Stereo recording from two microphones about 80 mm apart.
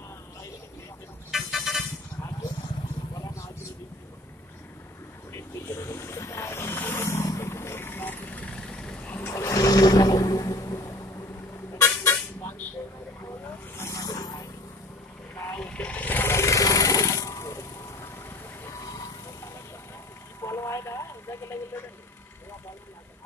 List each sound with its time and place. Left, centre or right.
1.3 s vehicle horn: centre
5.3 s a sound: left
7.3 s vehicle: left; by 9.2 s centre
9.2 s a sound: left
11.8 s vehicle: left
13.7 s vehicle: left
15.3 s a sound: left
15.6 s sewing machine: centre; by 18.8 s left
18.8 s vehicle: left
20.4 s radio: left